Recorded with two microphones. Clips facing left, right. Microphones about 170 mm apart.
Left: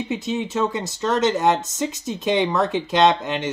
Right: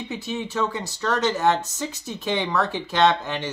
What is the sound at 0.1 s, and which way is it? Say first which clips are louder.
Speech: left 3 dB; 20° left (ahead or behind).